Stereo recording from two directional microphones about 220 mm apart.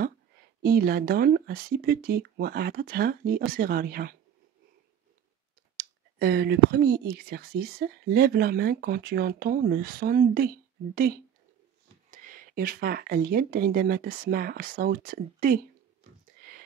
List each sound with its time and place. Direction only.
0.7 s speech: 45° right (ahead or behind)
5.8 s speech: 45° right (ahead or behind)